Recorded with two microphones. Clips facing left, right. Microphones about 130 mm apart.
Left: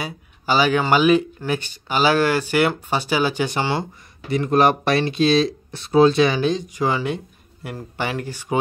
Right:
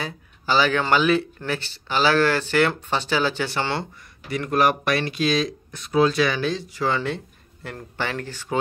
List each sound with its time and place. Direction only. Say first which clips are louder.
0.0 s speech: left 2 dB; 15° left (ahead or behind)